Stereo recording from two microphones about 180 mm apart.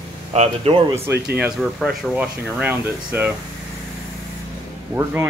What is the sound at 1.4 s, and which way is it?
Speech, centre (ahead or behind).